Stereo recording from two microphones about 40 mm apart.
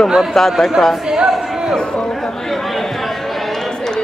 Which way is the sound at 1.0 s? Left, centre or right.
Centre.